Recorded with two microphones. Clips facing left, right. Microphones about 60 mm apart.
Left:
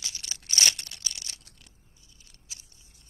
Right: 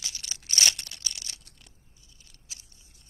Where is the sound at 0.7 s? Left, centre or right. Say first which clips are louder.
Even; centre.